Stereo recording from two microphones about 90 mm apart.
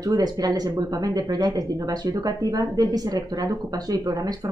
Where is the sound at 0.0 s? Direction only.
45° right (ahead or behind).